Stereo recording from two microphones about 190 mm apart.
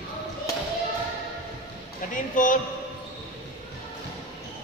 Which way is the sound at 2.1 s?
45° left (ahead or behind).